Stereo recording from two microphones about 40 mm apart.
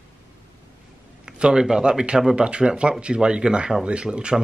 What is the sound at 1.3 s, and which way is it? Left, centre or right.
Speech, centre.